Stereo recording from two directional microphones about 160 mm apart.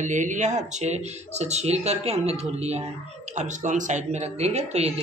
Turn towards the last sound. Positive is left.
turn(degrees=-40)  # may be behind; listen again after turning